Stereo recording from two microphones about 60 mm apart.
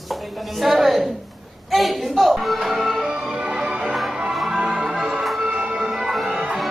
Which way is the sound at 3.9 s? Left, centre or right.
Centre.